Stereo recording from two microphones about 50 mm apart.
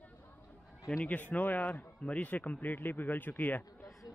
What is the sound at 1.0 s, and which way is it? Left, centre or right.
Speech, left.